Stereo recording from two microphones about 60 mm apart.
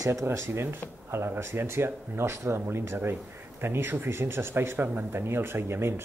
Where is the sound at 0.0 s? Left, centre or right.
Right.